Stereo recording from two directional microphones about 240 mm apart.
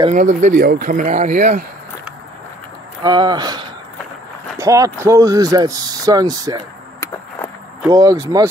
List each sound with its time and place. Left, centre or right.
0.1 s speech: right
3.0 s speech: centre
7.9 s speech: centre